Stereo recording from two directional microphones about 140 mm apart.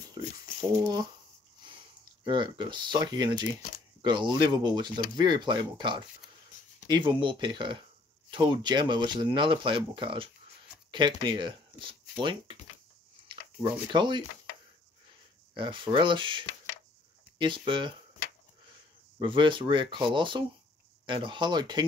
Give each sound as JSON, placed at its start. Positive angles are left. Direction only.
{"t": 0.1, "sound": "a sound", "side_deg": -30}
{"t": 2.2, "sound": "speech", "side_deg": -35}
{"t": 15.5, "sound": "speech", "side_deg": -35}
{"t": 19.1, "sound": "speech", "side_deg": -35}